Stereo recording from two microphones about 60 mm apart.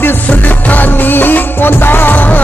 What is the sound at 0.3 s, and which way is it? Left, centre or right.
Music, left.